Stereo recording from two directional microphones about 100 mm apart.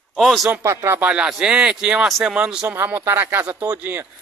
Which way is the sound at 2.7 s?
20° right (ahead or behind).